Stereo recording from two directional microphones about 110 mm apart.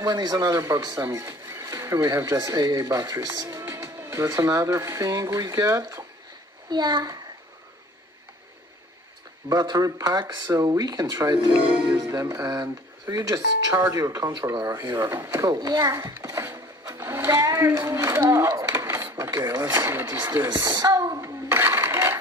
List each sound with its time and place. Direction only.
0.0 s speech: 40° right (ahead or behind)
3.6 s speech: 25° right (ahead or behind)
6.7 s speech: 40° right (ahead or behind)
9.5 s speech: 35° right (ahead or behind)
15.0 s speech: 20° right (ahead or behind)
16.2 s a sound: 25° right (ahead or behind)
17.3 s speech: 30° right (ahead or behind)
18.1 s a sound: 25° right (ahead or behind)
19.3 s speech: 35° right (ahead or behind)
19.7 s speech: 20° right (ahead or behind)
20.4 s a sound: 40° right (ahead or behind); by 22.2 s 20° right (ahead or behind)